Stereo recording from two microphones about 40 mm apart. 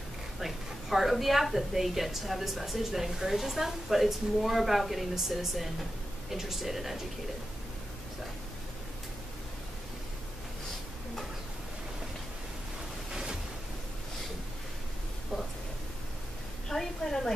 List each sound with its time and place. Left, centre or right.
0.4 s a woman's voice: centre
13.1 s waves: centre
16.6 s a sound: centre